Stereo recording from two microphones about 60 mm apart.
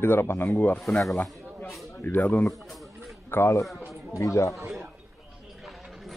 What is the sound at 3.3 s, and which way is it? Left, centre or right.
Speech, left.